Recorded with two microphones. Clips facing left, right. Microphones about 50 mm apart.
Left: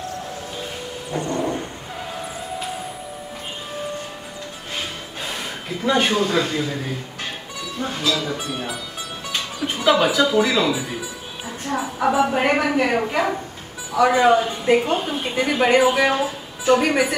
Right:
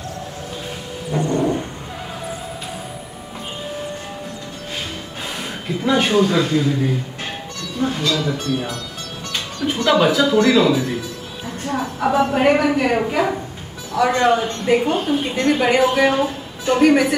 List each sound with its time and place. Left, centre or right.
1.1 s a sound: centre
6.0 s a woman's voice: centre
7.8 s a woman's voice: centre
9.3 s music: centre
11.6 s a woman's voice: centre